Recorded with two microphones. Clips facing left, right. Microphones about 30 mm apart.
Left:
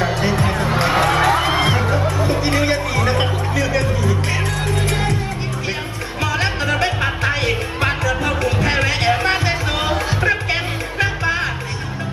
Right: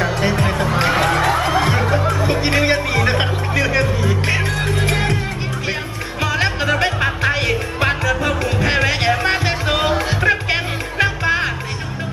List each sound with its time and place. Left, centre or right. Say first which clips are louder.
0.4 s music: right 1 dB; centre
0.7 s a sound: left 1 dB; centre
1.8 s music: right 1 dB; centre
6.2 s music: right 2 dB; centre